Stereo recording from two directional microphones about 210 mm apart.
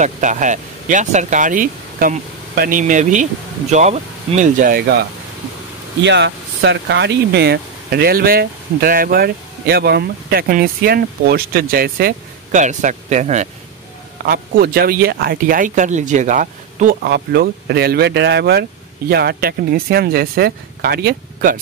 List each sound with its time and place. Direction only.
0.0 s speech: 35° right (ahead or behind)
6.0 s speech: 55° right (ahead or behind); by 13.5 s 35° right (ahead or behind)
14.2 s speech: 45° right (ahead or behind)